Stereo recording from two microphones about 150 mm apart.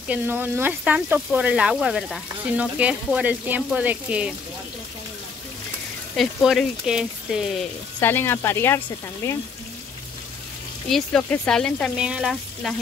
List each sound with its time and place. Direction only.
0.1 s speech: 15° right (ahead or behind)
6.1 s speech: centre (ahead or behind)
8.0 s speech: 15° left (ahead or behind)
10.9 s speech: centre (ahead or behind)